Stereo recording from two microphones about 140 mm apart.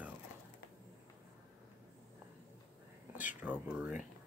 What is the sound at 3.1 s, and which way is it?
Speech, 10° right (ahead or behind).